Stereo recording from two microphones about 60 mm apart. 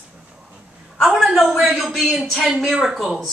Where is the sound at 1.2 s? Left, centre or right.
Centre.